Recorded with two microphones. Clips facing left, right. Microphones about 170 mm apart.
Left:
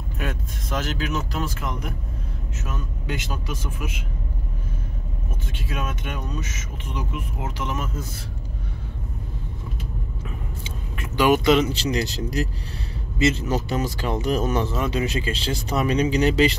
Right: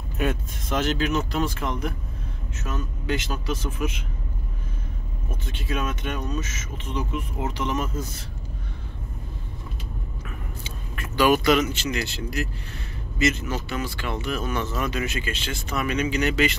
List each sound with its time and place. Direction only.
0.2 s speech: centre (ahead or behind)
5.5 s speech: 5° left (ahead or behind)
11.0 s speech: 20° left (ahead or behind)